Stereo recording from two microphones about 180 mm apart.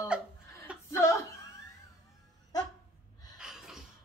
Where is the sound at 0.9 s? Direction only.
15° left (ahead or behind).